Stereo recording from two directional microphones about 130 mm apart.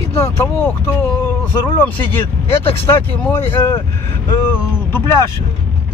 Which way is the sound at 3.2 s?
15° left (ahead or behind).